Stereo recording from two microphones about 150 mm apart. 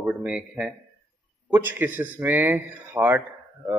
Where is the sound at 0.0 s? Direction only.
5° right (ahead or behind).